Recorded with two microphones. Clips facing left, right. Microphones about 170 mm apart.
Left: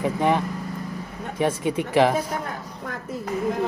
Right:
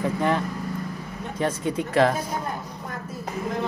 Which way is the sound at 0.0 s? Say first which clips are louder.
Left 2 dB; 15° left (ahead or behind).